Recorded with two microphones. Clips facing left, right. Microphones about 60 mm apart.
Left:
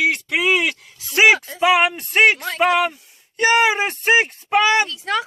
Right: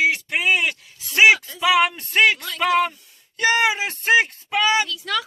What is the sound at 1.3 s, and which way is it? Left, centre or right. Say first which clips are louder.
A man's voice: left 2 dB; left.